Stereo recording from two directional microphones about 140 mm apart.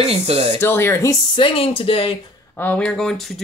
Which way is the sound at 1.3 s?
40° left (ahead or behind).